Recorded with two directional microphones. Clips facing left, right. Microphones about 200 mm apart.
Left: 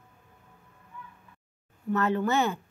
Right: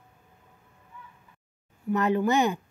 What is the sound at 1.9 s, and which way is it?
Speech, 15° right (ahead or behind).